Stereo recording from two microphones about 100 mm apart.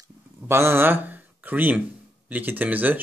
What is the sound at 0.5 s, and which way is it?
Speech, 25° right (ahead or behind).